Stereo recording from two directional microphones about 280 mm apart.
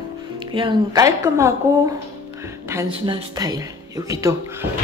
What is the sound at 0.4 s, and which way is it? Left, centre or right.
Speech, centre.